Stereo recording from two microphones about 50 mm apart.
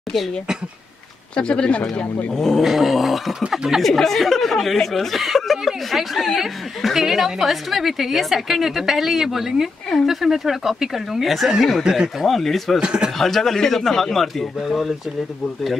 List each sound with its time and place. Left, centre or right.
1.3 s speech: centre
2.3 s speech: centre
12.3 s speech: centre
12.8 s speech: centre
13.2 s speech: centre